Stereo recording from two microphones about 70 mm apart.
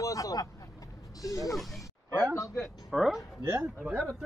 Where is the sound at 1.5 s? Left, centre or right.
Centre.